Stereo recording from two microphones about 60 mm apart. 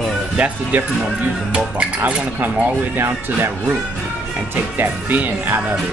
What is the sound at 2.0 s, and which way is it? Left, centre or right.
Speech, right.